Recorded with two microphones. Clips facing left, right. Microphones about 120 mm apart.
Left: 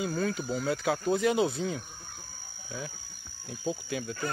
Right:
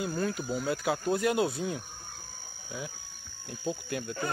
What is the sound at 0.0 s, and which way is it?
Speech, centre (ahead or behind).